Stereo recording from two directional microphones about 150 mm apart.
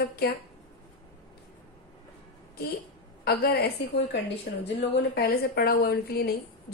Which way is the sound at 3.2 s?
90° left.